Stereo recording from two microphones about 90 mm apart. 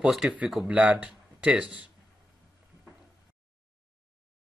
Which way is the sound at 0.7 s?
15° right (ahead or behind).